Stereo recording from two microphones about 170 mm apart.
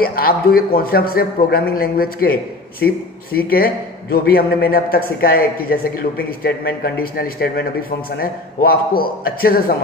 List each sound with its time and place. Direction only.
0.0 s speech: 60° left (ahead or behind)